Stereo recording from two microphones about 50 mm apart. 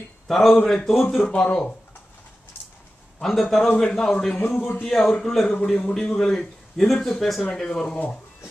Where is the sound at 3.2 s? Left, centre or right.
Centre.